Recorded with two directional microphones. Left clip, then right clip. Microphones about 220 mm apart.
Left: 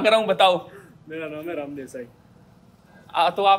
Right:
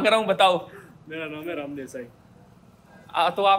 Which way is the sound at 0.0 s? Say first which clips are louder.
Left 2 dB; centre (ahead or behind).